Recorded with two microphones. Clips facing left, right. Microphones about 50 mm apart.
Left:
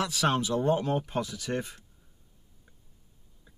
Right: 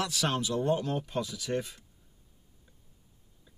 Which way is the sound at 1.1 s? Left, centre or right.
Left.